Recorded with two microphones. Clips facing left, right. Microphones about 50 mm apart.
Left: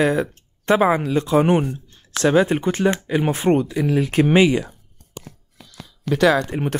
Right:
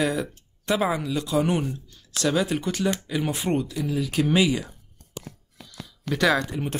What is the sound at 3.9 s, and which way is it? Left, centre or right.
Speech, left.